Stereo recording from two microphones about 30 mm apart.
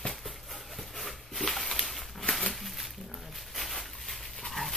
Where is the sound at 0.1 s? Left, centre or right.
Centre.